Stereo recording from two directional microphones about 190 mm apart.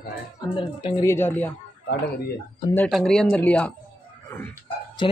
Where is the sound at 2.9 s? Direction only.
Centre (ahead or behind).